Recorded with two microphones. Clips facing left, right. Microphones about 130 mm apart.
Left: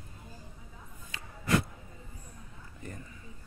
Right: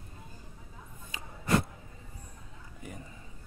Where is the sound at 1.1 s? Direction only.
15° right (ahead or behind).